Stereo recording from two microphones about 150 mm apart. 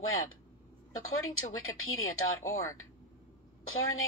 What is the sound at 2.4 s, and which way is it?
Speech, 20° left (ahead or behind).